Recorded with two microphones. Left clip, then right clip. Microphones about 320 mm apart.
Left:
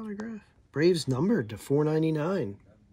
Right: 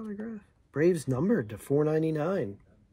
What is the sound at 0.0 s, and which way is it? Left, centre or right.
Speech, centre.